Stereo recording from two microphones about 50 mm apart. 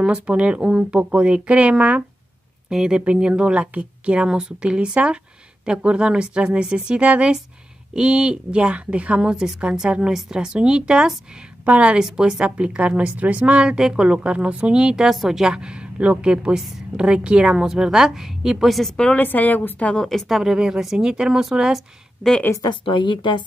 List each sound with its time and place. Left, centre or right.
0.0 s a woman's voice: right
2.7 s a woman's voice: centre
9.2 s a woman's voice: centre
11.6 s a woman's voice: right
12.0 s a woman's voice: centre
15.0 s a woman's voice: centre
15.5 s a woman's voice: centre
19.1 s a woman's voice: left
20.0 s a woman's voice: centre
20.3 s a woman's voice: centre